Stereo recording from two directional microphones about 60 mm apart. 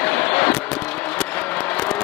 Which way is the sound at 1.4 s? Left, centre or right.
Left.